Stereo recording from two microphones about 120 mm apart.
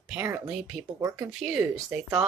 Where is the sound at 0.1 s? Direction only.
15° right (ahead or behind).